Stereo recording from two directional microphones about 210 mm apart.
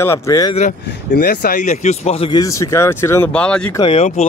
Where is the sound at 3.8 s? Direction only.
25° left (ahead or behind).